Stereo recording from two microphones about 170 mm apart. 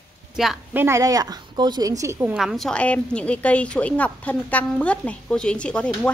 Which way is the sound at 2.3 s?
Centre (ahead or behind).